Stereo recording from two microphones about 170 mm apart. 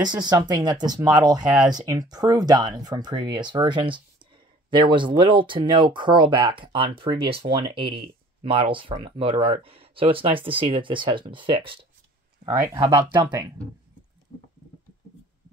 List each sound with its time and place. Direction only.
0.1 s speech: 25° right (ahead or behind)
13.1 s speech: 25° right (ahead or behind)